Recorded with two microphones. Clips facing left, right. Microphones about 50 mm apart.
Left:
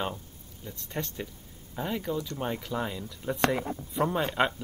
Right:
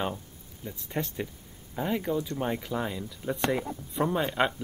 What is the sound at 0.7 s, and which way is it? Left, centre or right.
Speech, centre.